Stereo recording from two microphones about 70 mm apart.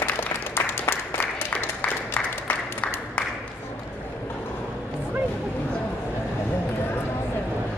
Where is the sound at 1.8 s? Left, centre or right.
Centre.